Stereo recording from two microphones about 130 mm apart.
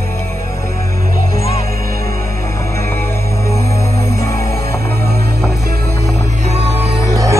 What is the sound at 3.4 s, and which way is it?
Music, 25° left (ahead or behind).